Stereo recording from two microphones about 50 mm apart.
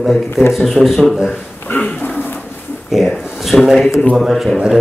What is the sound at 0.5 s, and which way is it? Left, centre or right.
Speech, centre.